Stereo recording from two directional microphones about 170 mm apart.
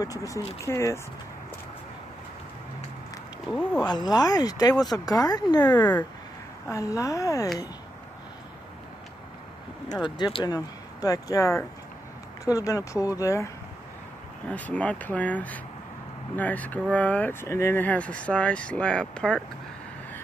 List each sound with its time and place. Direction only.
0.0 s speech: 20° left (ahead or behind)
3.8 s speech: 25° left (ahead or behind)
9.9 s speech: 25° left (ahead or behind)
14.5 s speech: 10° left (ahead or behind)